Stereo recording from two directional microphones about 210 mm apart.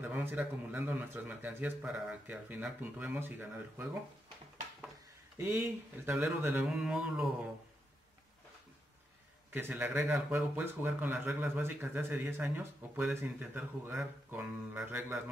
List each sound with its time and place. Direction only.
0.0 s speech: 10° right (ahead or behind)
5.4 s speech: 10° right (ahead or behind)
9.5 s speech: 10° right (ahead or behind)